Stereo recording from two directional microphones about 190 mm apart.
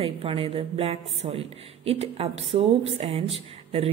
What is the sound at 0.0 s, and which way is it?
A woman's voice, 30° right (ahead or behind).